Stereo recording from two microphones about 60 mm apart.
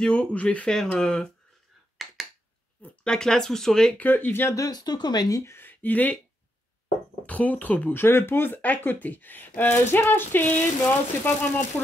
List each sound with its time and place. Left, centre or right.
0.0 s speech: centre
0.7 s speech: centre
2.0 s finger snapping: centre
3.0 s speech: centre
4.0 s speech: left
4.3 s speech: left
4.6 s speech: left
5.4 s a sound: left
5.7 s speech: left
7.2 s speech: left
7.9 s speech: left
8.5 s speech: left